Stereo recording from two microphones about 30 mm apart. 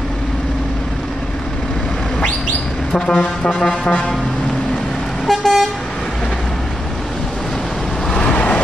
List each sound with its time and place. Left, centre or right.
3.1 s vehicle: left
5.3 s vehicle: centre
8.2 s vehicle: left